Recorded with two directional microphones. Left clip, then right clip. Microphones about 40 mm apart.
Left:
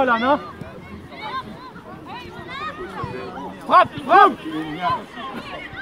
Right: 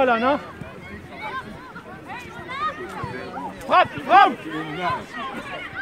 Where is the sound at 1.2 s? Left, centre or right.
Right.